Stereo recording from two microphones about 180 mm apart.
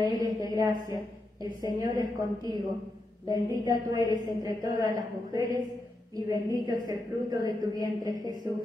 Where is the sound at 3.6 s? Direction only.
20° right (ahead or behind).